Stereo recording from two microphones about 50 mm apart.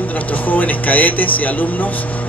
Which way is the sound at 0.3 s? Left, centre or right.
Left.